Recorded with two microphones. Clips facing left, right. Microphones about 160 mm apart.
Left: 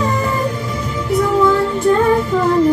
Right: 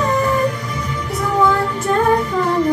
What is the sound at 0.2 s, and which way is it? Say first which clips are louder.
Music: right 2 dB; 25° left (ahead or behind).